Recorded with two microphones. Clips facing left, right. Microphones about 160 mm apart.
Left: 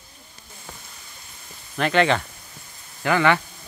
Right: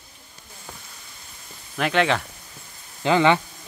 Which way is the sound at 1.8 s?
Centre (ahead or behind).